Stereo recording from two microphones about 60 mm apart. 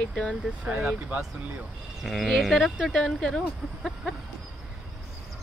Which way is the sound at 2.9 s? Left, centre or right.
Centre.